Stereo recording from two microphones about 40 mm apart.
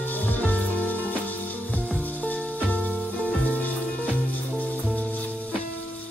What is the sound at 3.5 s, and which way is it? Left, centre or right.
Music, left.